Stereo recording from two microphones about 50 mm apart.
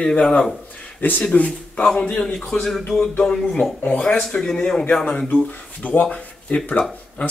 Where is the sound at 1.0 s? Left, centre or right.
Left.